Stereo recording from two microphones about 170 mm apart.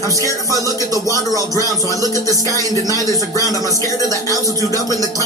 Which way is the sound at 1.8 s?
20° right (ahead or behind).